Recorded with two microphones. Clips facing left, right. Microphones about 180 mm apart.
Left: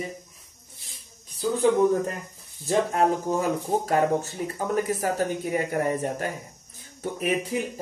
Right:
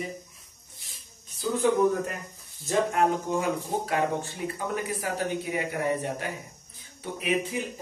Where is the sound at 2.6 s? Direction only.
40° left (ahead or behind).